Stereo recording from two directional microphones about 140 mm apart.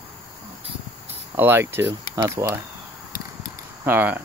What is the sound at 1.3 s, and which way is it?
Speech, 15° right (ahead or behind).